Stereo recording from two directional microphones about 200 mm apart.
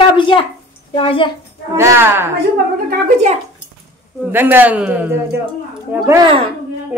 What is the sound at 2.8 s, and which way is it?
Speech, 40° right (ahead or behind).